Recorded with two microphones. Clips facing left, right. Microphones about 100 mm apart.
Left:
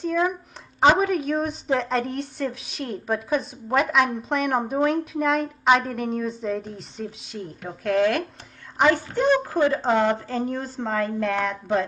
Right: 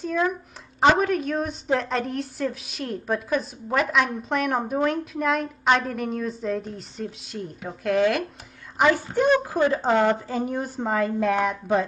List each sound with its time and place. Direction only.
0.0 s a woman's voice: centre (ahead or behind)